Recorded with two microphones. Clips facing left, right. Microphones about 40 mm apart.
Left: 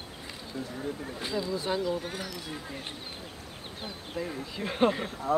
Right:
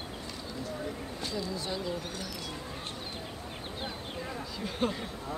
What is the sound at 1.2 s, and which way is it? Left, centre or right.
Speech, left.